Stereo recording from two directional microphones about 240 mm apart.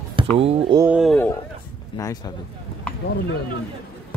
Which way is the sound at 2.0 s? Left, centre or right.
Centre.